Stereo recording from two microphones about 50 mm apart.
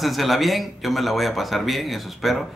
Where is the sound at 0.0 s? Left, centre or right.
Centre.